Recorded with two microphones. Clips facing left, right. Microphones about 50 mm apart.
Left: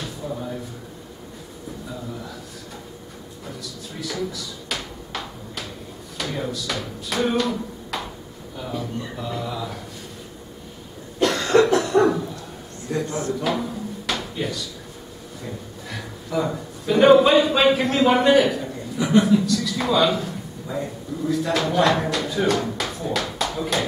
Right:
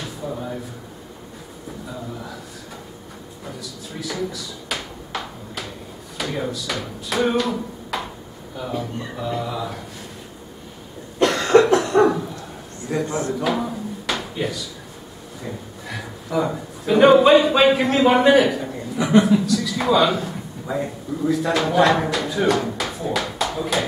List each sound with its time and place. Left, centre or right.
3.4 s drawer open or close: centre
6.1 s speech: centre
11.2 s cough: centre
12.8 s drawer open or close: centre
15.9 s a man's voice: centre